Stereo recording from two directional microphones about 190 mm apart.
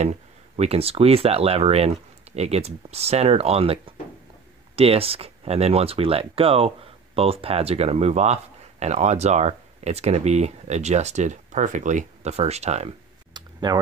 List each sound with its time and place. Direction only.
0.0 s speech: 35° right (ahead or behind)
13.3 s clicking: 20° right (ahead or behind)